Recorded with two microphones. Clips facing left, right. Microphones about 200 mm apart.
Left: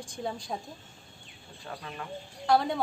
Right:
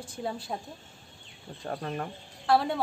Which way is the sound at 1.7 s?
45° right (ahead or behind).